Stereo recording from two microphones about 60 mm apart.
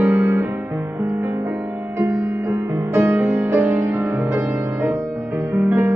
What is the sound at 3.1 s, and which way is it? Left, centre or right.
Music, right.